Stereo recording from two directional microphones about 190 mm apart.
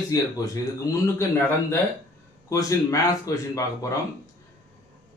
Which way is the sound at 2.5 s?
15° left (ahead or behind).